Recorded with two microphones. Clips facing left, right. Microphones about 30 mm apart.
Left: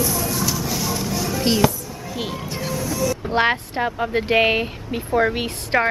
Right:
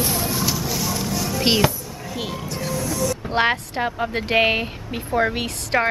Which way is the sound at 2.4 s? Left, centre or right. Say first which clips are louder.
Even; centre.